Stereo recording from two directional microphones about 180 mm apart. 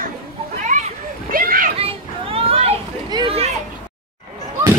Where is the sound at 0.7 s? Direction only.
50° right (ahead or behind).